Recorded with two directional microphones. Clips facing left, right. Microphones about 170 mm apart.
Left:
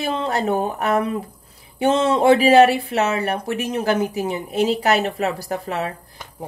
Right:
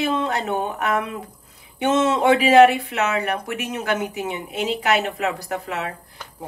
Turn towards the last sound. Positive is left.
turn(degrees=35)  # may be behind; listen again after turning